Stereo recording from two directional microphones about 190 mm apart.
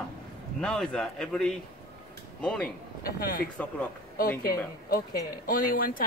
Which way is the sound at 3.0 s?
50° left (ahead or behind).